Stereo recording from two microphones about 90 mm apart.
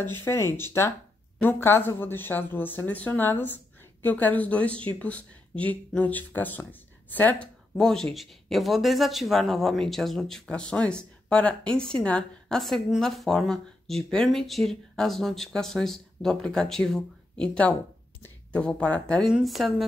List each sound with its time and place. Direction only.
0.2 s speech: 30° left (ahead or behind)
7.7 s speech: 5° left (ahead or behind)